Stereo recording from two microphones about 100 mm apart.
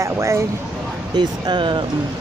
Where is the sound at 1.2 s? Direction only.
50° right (ahead or behind).